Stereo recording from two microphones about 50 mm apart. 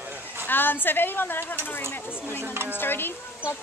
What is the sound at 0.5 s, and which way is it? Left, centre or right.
Speech, left.